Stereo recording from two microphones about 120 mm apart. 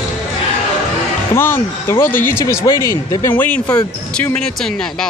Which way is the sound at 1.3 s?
20° left (ahead or behind).